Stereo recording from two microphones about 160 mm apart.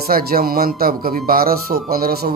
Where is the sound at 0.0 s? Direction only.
70° right (ahead or behind).